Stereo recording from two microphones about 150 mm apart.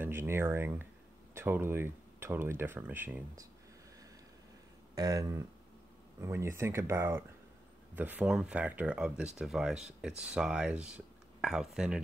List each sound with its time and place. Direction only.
0.0 s speech: 15° right (ahead or behind)
4.9 s speech: 25° right (ahead or behind); by 12.0 s 5° right (ahead or behind)